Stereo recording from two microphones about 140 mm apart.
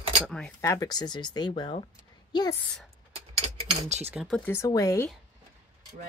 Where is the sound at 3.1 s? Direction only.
40° right (ahead or behind).